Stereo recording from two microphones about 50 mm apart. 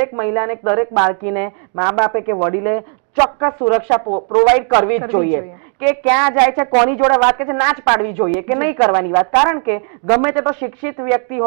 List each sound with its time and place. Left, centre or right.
0.0 s a woman's voice: centre
4.7 s a woman's voice: centre